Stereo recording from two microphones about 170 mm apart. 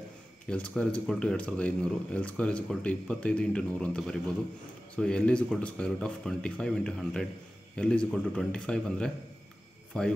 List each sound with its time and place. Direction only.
0.5 s speech: 5° left (ahead or behind)